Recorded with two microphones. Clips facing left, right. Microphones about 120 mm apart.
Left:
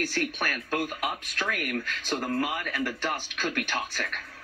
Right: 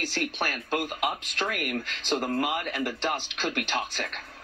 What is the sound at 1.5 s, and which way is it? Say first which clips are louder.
Speech: left 3 dB; 40° right (ahead or behind).